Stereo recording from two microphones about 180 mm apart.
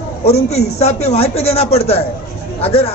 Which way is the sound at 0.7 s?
35° left (ahead or behind).